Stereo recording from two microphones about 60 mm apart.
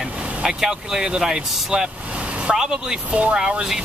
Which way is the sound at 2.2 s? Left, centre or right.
Centre.